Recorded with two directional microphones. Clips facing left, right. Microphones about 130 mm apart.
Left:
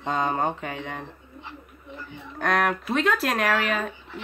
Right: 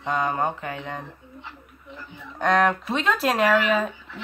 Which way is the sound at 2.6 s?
Centre (ahead or behind).